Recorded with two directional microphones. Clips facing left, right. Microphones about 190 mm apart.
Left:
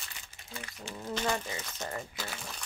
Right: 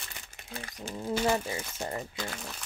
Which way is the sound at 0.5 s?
40° right (ahead or behind).